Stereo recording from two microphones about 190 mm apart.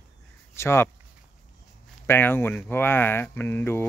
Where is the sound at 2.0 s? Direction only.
10° left (ahead or behind).